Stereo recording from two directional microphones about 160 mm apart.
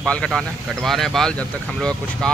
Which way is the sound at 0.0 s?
5° left (ahead or behind).